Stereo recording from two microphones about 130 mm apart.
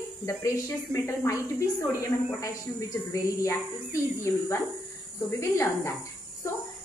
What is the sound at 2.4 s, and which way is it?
Speech, 25° left (ahead or behind).